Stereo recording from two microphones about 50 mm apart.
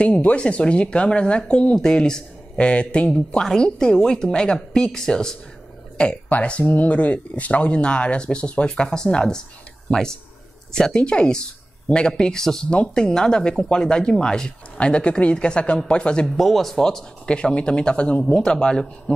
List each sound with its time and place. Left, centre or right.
0.0 s a woman's voice: left
6.2 s a woman's voice: left
16.3 s a woman's voice: centre